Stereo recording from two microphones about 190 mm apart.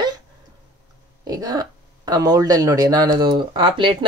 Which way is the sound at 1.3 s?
20° right (ahead or behind).